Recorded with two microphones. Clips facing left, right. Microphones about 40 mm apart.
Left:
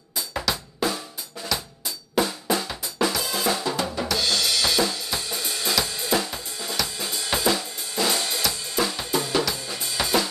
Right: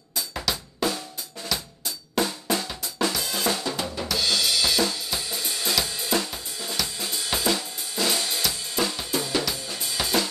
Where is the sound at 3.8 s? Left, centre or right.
Centre.